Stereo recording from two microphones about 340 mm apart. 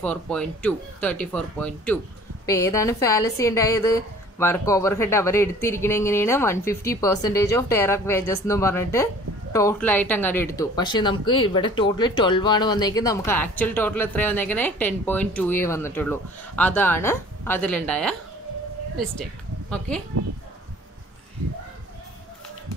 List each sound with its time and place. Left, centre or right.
0.0 s a woman's voice: centre